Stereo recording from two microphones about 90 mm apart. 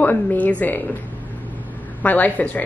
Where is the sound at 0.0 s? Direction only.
20° left (ahead or behind).